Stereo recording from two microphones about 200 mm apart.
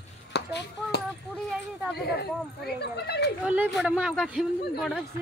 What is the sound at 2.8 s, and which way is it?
Speech, 55° left (ahead or behind).